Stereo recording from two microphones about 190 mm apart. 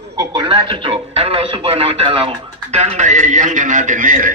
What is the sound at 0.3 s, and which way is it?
A man's voice, 25° right (ahead or behind).